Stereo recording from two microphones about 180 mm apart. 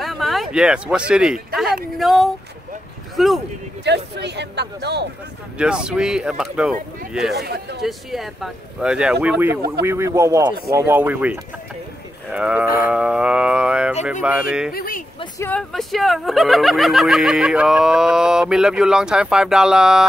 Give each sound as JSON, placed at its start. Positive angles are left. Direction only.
{"t": 0.0, "sound": "a man's voice", "side_deg": 0}
{"t": 3.8, "sound": "speech", "side_deg": -70}
{"t": 5.6, "sound": "speech", "side_deg": -5}
{"t": 7.3, "sound": "speech", "side_deg": -65}
{"t": 7.8, "sound": "speech", "side_deg": 0}
{"t": 12.6, "sound": "speech", "side_deg": 50}
{"t": 12.9, "sound": "speech", "side_deg": -5}
{"t": 14.7, "sound": "speech", "side_deg": 55}
{"t": 15.3, "sound": "speech", "side_deg": 10}
{"t": 15.7, "sound": "speech", "side_deg": 0}